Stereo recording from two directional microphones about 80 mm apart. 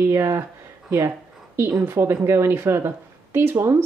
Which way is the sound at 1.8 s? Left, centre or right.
Right.